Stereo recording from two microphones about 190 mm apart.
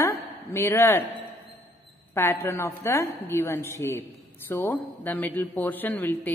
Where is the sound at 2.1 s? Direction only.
10° left (ahead or behind).